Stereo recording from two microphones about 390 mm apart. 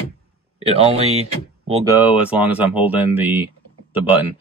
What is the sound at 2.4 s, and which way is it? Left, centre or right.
Speech, centre.